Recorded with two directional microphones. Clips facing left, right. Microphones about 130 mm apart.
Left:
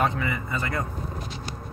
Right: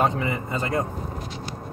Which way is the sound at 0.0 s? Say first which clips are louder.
Right 2 dB; 30° right (ahead or behind).